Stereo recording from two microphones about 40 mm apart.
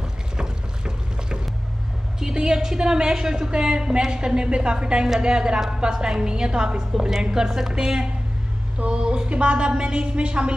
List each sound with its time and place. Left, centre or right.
0.4 s boat: right
2.1 s a woman's voice: centre